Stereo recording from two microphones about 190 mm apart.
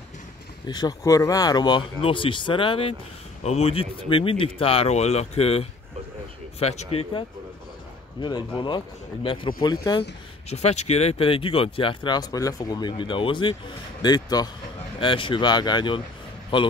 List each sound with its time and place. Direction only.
0.7 s speech: 20° left (ahead or behind)
10.5 s speech: 35° left (ahead or behind)